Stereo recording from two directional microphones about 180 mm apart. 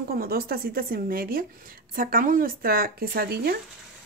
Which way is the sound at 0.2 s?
55° right (ahead or behind).